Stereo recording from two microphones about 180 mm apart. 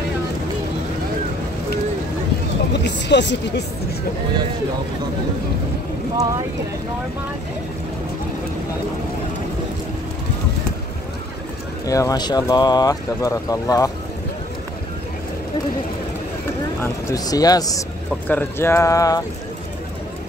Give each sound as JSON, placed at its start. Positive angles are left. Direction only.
{"t": 2.7, "sound": "speech", "side_deg": 75}
{"t": 11.8, "sound": "speech", "side_deg": 20}
{"t": 16.8, "sound": "speech", "side_deg": 20}